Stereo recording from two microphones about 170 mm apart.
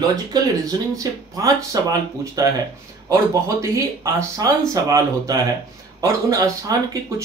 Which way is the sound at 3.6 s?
15° right (ahead or behind).